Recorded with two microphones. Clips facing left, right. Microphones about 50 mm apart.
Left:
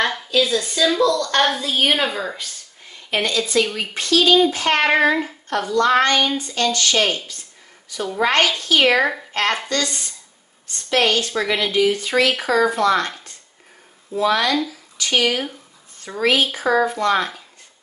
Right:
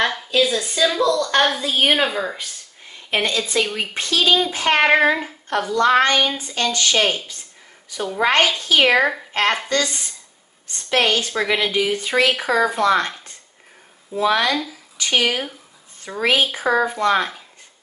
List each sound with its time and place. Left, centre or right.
0.0 s a sound: centre
0.4 s speech: centre
3.1 s speech: right; by 5.8 s centre
5.8 s a woman's voice: centre
14.2 s speech: centre